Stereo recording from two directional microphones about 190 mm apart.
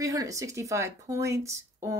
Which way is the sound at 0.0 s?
20° right (ahead or behind).